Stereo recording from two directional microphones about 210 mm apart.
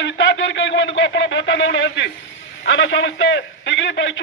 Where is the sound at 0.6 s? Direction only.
60° left (ahead or behind).